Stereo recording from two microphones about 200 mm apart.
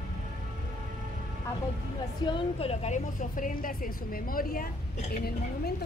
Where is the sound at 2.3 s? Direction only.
30° left (ahead or behind).